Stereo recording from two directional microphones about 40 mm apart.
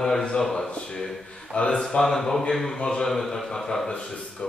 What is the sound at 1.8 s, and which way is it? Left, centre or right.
Speech, centre.